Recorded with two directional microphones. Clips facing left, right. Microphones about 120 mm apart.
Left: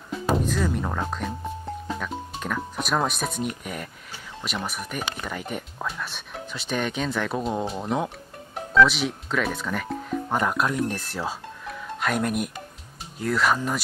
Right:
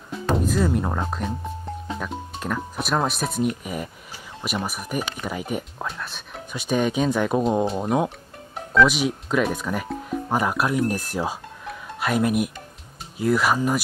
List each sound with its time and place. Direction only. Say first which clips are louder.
0.4 s speech: right 3 dB; 10° right (ahead or behind)
6.5 s speech: right 6 dB; 10° right (ahead or behind)
11.6 s music: even; 5° right (ahead or behind)
13.2 s speech: right 3 dB; 10° right (ahead or behind)